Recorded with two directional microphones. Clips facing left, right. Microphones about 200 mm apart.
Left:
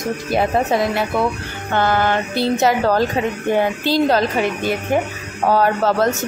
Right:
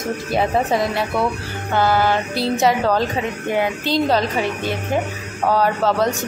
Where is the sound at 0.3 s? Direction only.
Centre (ahead or behind).